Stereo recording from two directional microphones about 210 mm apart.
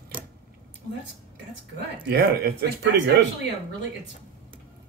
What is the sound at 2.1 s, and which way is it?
Speech, 50° right (ahead or behind).